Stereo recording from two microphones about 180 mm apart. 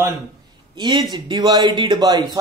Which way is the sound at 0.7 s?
25° right (ahead or behind).